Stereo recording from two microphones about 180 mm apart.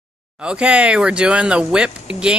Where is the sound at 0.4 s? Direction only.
5° right (ahead or behind).